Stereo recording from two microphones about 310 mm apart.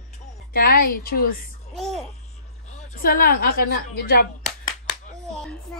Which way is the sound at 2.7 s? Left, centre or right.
Left.